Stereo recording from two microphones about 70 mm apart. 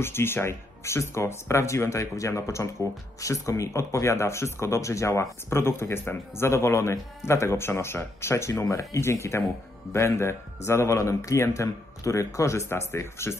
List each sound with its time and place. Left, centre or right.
0.0 s speech: left